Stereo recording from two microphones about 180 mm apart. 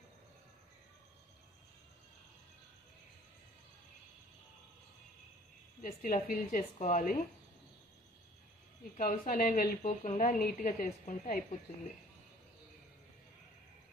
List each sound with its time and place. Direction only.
5.8 s speech: 50° left (ahead or behind)
8.9 s a woman's voice: 50° left (ahead or behind)